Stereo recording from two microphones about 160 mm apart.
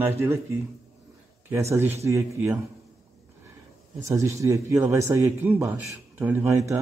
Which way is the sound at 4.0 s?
20° right (ahead or behind).